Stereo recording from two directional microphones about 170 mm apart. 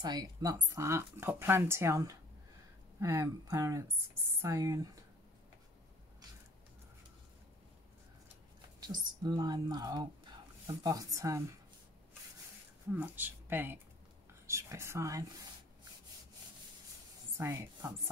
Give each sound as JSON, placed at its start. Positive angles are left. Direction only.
{"t": 0.0, "sound": "speech", "side_deg": -25}
{"t": 8.8, "sound": "speech", "side_deg": -25}
{"t": 12.9, "sound": "speech", "side_deg": -10}
{"t": 17.4, "sound": "speech", "side_deg": -15}